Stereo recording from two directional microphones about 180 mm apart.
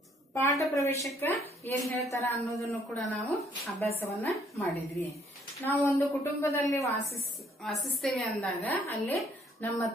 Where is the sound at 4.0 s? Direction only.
15° left (ahead or behind).